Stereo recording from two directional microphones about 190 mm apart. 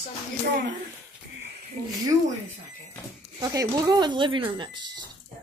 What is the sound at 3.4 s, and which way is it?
Speech, 20° right (ahead or behind).